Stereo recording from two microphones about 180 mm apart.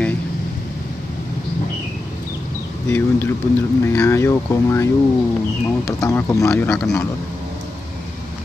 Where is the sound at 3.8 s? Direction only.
15° left (ahead or behind).